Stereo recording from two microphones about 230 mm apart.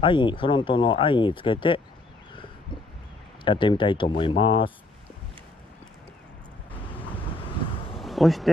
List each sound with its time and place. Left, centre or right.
0.0 s speech: left
3.4 s speech: left
8.0 s a sound: centre